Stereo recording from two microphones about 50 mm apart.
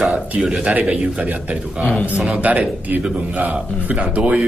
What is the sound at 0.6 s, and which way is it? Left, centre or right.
Speech, right.